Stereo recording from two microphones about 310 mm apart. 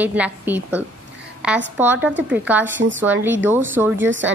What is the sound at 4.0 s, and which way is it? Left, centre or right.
Speech, right.